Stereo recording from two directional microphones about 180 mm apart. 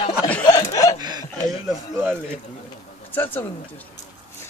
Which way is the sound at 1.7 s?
Centre (ahead or behind).